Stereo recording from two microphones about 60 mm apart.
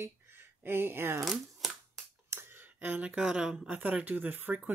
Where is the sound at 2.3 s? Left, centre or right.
Right.